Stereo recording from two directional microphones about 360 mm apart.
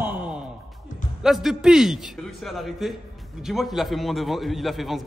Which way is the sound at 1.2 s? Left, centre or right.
Centre.